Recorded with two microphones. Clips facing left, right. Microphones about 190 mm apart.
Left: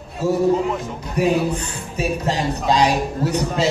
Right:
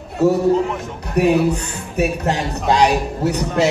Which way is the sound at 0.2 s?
65° right (ahead or behind).